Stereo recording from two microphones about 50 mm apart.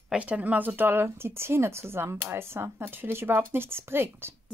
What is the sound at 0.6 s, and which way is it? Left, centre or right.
Speech, right.